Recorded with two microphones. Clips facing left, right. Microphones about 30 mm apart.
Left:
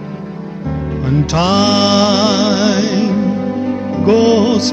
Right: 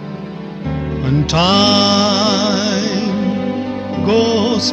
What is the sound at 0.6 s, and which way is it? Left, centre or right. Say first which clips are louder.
Music: even; right.